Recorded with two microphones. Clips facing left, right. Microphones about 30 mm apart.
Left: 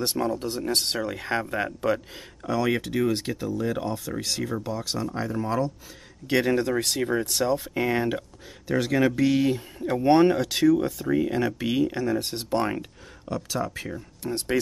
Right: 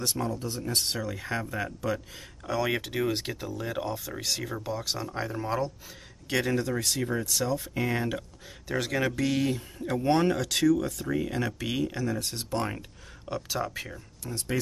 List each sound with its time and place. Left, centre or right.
0.0 s speech: left
0.3 s speech: left
1.0 s speech: left
2.4 s speech: centre
6.2 s speech: centre
6.8 s speech: left
7.5 s speech: centre
12.2 s speech: left
13.2 s speech: centre
14.2 s speech: left